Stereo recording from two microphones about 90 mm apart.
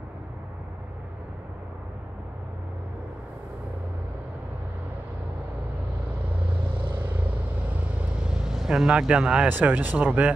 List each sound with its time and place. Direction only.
8.3 s speech: 5° right (ahead or behind)